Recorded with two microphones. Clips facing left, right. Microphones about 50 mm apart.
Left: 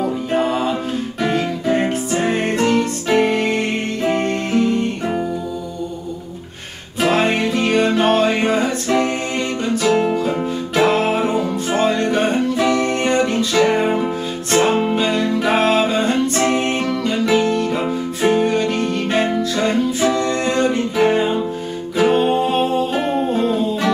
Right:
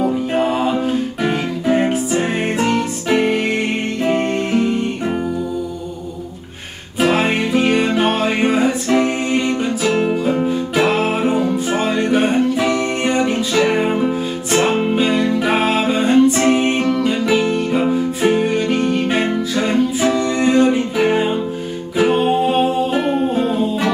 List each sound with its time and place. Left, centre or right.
0.0 s music: centre
7.0 s music: centre